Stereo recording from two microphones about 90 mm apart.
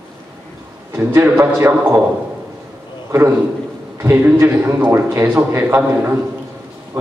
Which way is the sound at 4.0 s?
20° right (ahead or behind).